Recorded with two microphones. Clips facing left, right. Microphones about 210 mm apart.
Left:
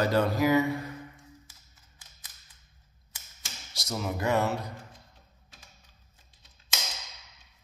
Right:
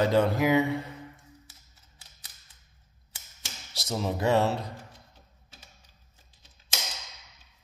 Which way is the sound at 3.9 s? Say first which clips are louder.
Right 3 dB; 30° right (ahead or behind).